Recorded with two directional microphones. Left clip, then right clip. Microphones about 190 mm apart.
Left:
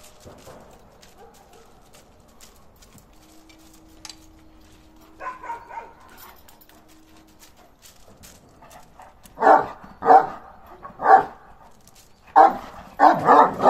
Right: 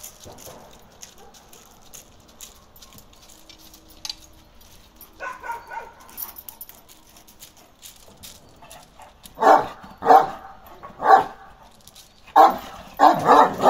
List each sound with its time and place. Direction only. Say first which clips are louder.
9.4 s dog: even; 10° right (ahead or behind)
12.3 s dog: even; 10° right (ahead or behind)